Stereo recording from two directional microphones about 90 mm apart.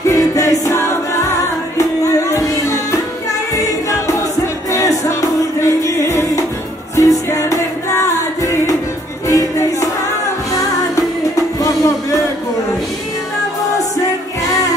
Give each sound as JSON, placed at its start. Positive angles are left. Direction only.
{"t": 0.0, "sound": "music", "side_deg": 40}
{"t": 4.7, "sound": "music", "side_deg": 35}
{"t": 11.6, "sound": "music", "side_deg": 40}